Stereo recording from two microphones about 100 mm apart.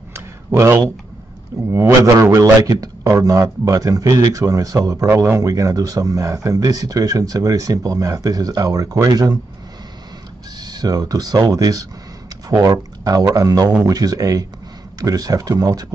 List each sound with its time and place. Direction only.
0.5 s a man's voice: 25° right (ahead or behind)
10.6 s a man's voice: 40° right (ahead or behind)